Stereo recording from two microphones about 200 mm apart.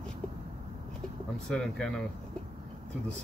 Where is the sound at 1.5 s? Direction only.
5° left (ahead or behind).